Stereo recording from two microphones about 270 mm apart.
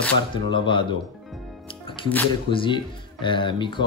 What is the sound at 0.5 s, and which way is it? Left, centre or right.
Speech, centre.